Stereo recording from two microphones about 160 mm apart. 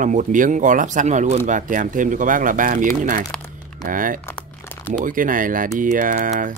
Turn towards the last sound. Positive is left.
turn(degrees=-55)  # may be behind; listen again after turning